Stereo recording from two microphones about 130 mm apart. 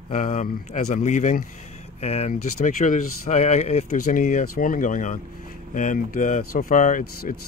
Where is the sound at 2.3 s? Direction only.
85° left.